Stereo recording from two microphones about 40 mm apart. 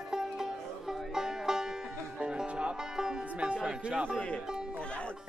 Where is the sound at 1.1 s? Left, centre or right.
Centre.